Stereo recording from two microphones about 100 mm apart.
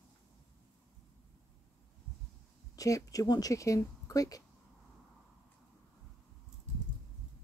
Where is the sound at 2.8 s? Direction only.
35° left (ahead or behind).